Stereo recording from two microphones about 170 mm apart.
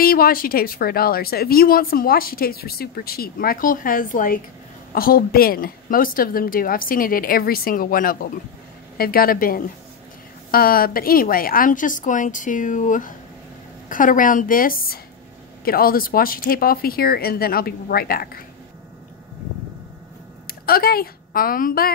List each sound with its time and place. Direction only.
0.0 s a woman's voice: 60° left (ahead or behind)
20.4 s speech: 60° left (ahead or behind)